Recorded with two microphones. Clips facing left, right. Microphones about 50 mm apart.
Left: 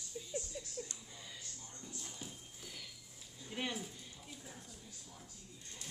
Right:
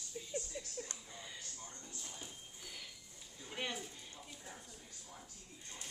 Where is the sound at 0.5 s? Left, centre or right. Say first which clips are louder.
Right 1 dB; centre.